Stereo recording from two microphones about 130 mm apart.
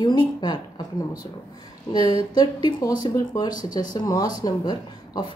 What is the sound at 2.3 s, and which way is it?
Speech, 35° left (ahead or behind).